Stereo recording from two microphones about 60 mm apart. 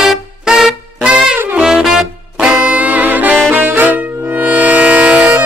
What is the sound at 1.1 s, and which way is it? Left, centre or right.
Brass instrument, centre.